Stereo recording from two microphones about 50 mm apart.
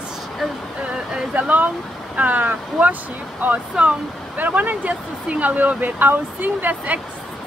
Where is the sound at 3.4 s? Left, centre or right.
Right.